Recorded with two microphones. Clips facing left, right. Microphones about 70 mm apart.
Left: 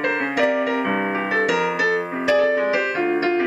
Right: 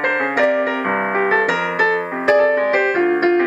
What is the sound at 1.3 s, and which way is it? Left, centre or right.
Music, right.